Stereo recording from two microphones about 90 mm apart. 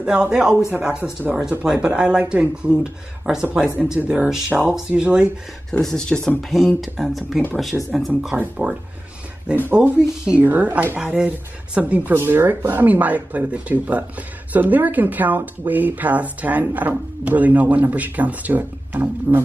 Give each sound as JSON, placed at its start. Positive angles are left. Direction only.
{"t": 0.0, "sound": "speech", "side_deg": -10}
{"t": 5.7, "sound": "speech", "side_deg": 5}
{"t": 6.8, "sound": "speech", "side_deg": 0}
{"t": 8.4, "sound": "speech", "side_deg": -15}
{"t": 9.8, "sound": "speech", "side_deg": -10}